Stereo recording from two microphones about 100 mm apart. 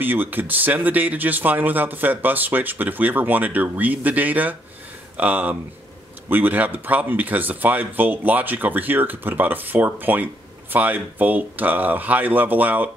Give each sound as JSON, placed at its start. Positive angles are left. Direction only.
{"t": 0.0, "sound": "speech", "side_deg": -20}